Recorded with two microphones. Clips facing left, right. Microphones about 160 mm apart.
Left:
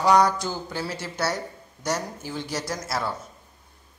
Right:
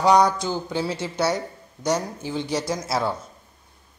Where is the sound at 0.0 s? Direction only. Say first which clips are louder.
Right 2 dB; 15° right (ahead or behind).